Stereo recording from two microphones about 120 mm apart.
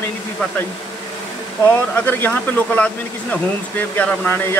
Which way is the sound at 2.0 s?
15° left (ahead or behind).